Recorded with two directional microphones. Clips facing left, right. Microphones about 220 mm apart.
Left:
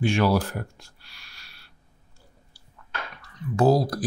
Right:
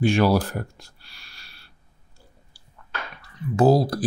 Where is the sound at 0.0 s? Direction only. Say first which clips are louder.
Right 3 dB; 35° right (ahead or behind).